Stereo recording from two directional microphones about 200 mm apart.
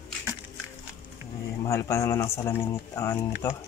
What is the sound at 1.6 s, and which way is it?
Speech, 15° left (ahead or behind).